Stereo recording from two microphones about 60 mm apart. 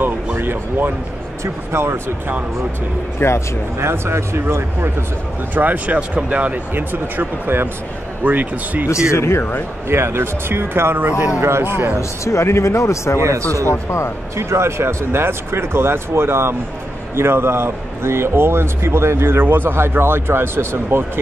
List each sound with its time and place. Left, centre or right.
0.4 s a man's voice: right
3.2 s a man's voice: left
3.8 s a man's voice: right
5.5 s speech: right
9.1 s a man's voice: left
9.8 s speech: right
11.1 s speech: right
11.4 s a man's voice: right
12.0 s a man's voice: left
13.2 s speech: right
13.7 s a man's voice: left
14.3 s a man's voice: right